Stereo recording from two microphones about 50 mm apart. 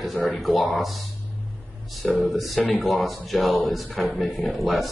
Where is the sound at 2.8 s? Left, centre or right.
Centre.